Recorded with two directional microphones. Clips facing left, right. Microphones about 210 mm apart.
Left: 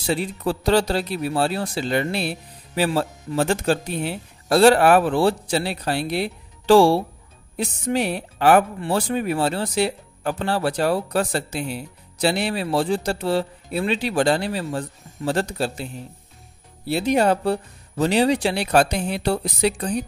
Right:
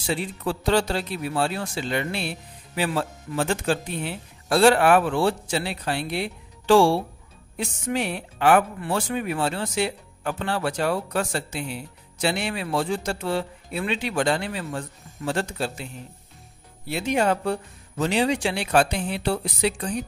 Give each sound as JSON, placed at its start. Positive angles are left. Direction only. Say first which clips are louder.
{"t": 0.0, "sound": "speech", "louder": "left 4 dB", "side_deg": 35}